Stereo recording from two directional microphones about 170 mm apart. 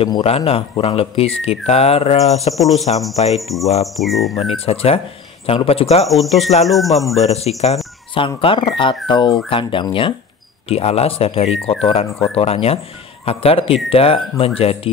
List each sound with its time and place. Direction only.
0.0 s speech: 35° left (ahead or behind)
3.3 s bird: centre (ahead or behind)
4.6 s speech: 35° left (ahead or behind)
6.0 s bird: centre (ahead or behind)
7.2 s speech: 40° left (ahead or behind)